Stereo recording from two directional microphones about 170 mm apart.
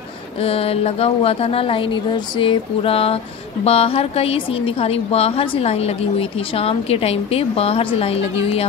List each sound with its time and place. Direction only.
0.4 s a woman's voice: 35° left (ahead or behind)